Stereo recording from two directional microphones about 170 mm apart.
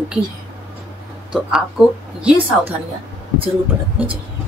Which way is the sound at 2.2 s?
5° right (ahead or behind).